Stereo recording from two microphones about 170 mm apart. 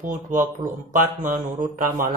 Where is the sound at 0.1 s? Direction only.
50° right (ahead or behind).